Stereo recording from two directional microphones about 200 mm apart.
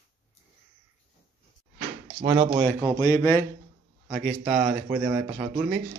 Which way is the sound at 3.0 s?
15° left (ahead or behind).